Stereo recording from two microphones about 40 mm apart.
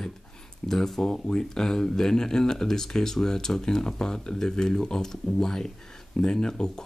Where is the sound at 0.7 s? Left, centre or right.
Centre.